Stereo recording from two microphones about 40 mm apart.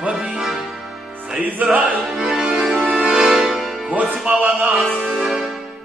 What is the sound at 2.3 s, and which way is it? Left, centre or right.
Music, right.